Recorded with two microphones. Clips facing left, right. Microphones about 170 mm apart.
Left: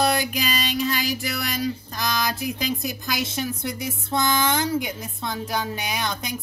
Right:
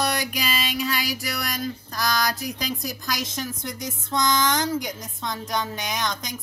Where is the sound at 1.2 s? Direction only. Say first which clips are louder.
Left 3 dB; centre (ahead or behind).